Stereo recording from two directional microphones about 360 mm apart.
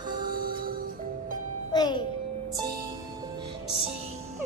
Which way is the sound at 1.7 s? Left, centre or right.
Centre.